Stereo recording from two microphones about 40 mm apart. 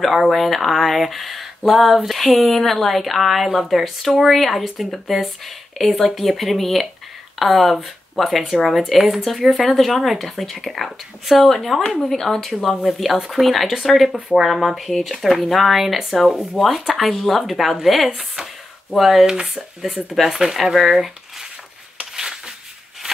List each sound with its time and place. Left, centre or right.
0.3 s speech: centre
12.8 s speech: centre
19.2 s speech: centre
22.1 s a sound: centre